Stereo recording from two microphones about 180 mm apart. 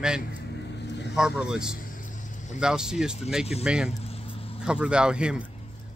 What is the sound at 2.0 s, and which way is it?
Vehicle, 45° left (ahead or behind).